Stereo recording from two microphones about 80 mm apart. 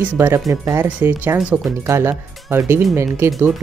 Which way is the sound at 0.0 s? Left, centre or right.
Centre.